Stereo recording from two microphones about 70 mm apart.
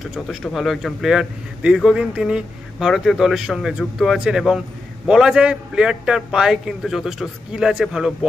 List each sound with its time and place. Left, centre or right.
0.0 s a man's voice: centre